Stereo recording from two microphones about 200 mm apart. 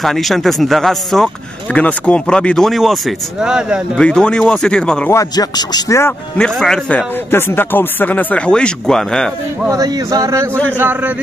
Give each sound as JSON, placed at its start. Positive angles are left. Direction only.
{"t": 0.0, "sound": "speech", "side_deg": 0}
{"t": 9.7, "sound": "speech", "side_deg": -15}